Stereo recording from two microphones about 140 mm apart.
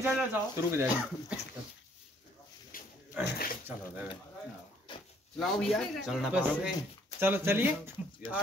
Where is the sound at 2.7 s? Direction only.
85° left.